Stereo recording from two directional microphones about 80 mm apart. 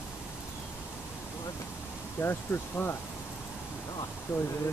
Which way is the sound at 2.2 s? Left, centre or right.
Left.